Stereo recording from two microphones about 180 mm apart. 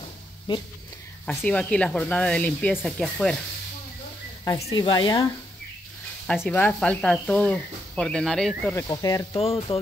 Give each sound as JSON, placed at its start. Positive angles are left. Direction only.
{"t": 0.5, "sound": "speech", "side_deg": 25}
{"t": 1.2, "sound": "speech", "side_deg": 5}
{"t": 4.5, "sound": "speech", "side_deg": 25}
{"t": 6.4, "sound": "speech", "side_deg": 10}
{"t": 8.7, "sound": "speech", "side_deg": 20}
{"t": 9.4, "sound": "speech", "side_deg": 30}